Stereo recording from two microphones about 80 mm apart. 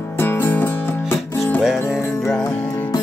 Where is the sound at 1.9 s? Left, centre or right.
Centre.